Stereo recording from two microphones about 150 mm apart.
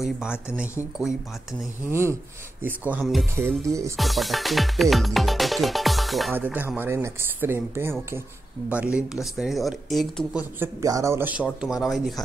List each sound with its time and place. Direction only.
0.0 s music: 5° right (ahead or behind)
1.9 s speech: 15° right (ahead or behind)
3.9 s music: centre (ahead or behind)
6.3 s speech: 10° right (ahead or behind)
8.6 s music: 10° right (ahead or behind)
10.6 s speech: 20° right (ahead or behind)